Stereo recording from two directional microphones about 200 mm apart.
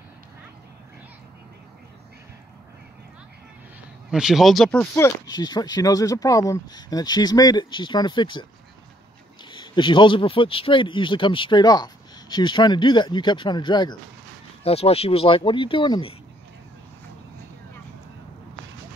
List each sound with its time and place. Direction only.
4.1 s speech: centre (ahead or behind); by 8.5 s 25° left (ahead or behind)
9.5 s speech: 25° left (ahead or behind)